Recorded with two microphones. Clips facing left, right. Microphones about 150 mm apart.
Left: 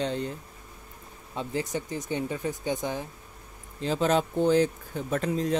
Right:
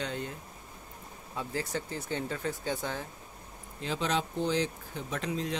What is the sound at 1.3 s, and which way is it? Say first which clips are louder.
Speech: left 4 dB; 20° left (ahead or behind).